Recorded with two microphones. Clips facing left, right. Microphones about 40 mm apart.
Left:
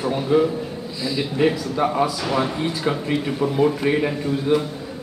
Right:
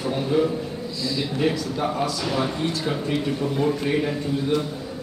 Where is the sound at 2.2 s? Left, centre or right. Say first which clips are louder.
Left 2 dB; centre.